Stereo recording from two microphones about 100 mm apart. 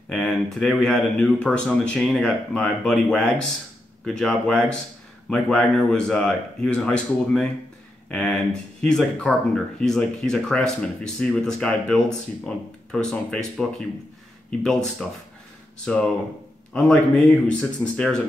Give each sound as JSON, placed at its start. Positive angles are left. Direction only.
{"t": 0.1, "sound": "speech", "side_deg": 5}